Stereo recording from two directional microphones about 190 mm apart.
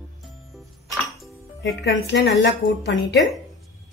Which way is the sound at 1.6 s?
70° left (ahead or behind).